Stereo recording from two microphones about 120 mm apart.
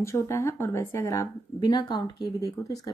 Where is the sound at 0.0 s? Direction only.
25° left (ahead or behind).